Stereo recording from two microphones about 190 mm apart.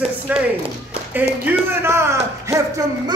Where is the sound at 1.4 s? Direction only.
10° right (ahead or behind).